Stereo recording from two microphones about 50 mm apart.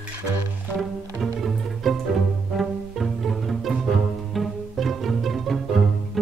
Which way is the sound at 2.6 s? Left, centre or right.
Centre.